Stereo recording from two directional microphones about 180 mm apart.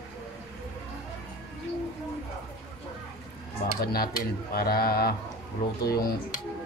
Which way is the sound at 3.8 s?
60° left (ahead or behind).